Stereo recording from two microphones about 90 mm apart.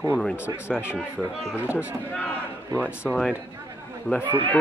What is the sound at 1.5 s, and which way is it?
Speech, 20° right (ahead or behind).